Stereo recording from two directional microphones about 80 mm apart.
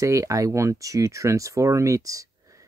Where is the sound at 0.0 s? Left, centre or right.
Right.